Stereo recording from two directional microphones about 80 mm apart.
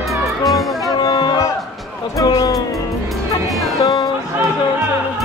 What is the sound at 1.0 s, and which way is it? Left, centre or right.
Music, left.